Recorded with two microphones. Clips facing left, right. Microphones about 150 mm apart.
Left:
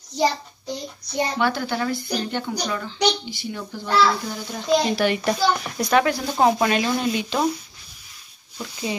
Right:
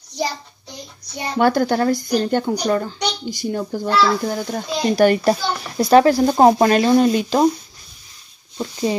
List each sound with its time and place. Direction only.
1.4 s speech: 45° right (ahead or behind)
5.3 s speech: 30° right (ahead or behind)